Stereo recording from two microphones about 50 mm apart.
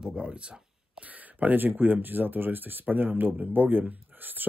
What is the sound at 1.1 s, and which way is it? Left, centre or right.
Speech, right.